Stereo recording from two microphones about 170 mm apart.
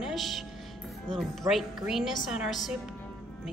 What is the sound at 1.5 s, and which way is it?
A woman's voice, centre (ahead or behind).